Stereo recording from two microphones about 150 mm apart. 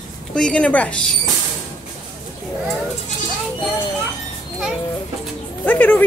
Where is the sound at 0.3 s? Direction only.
5° left (ahead or behind).